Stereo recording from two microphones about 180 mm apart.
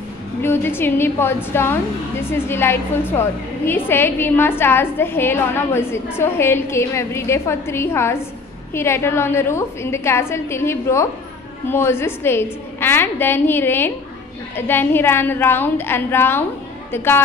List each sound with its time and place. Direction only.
0.4 s a woman's voice: 10° left (ahead or behind)